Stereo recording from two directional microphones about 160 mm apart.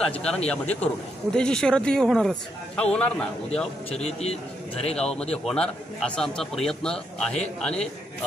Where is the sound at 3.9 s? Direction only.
40° left (ahead or behind).